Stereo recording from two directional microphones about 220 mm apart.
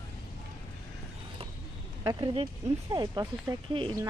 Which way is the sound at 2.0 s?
20° right (ahead or behind).